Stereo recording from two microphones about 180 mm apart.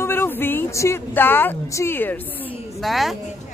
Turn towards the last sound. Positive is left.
turn(degrees=0)  # may be behind; listen again after turning